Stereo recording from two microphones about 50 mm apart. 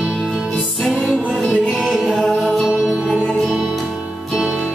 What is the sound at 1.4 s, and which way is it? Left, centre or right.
Music, left.